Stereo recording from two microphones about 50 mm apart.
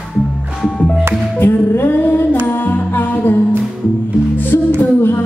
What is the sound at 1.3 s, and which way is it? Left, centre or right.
Music, left.